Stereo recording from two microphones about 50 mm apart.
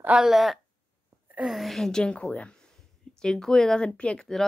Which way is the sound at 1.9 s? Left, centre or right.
Centre.